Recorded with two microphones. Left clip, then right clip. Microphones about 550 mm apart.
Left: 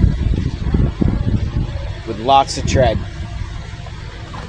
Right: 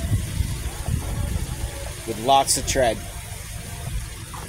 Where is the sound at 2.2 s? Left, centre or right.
Right.